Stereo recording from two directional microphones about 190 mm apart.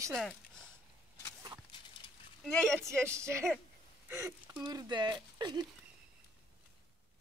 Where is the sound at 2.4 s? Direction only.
5° left (ahead or behind).